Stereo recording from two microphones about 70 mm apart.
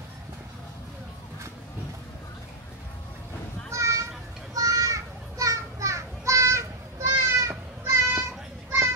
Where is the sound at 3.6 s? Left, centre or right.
Right.